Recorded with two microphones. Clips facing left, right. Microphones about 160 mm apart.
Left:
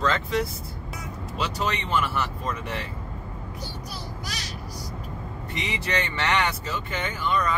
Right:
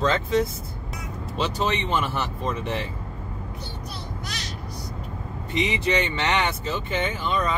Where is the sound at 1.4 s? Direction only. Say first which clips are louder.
Right 3 dB; 25° right (ahead or behind).